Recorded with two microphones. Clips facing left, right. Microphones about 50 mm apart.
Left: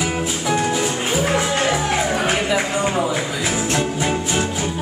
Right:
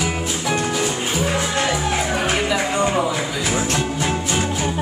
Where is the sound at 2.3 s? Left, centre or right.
Centre.